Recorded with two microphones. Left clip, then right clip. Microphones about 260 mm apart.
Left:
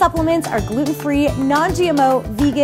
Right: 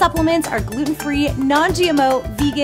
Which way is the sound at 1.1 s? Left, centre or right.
Left.